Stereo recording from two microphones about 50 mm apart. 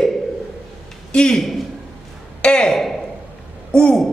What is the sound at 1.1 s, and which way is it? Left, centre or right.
Speech, centre.